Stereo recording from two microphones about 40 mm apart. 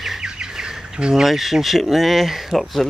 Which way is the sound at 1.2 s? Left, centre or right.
Centre.